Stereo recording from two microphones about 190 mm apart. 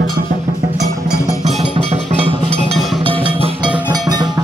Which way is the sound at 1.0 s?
15° left (ahead or behind).